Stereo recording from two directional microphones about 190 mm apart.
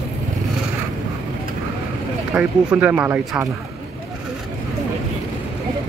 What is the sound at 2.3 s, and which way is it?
Speech, 10° right (ahead or behind).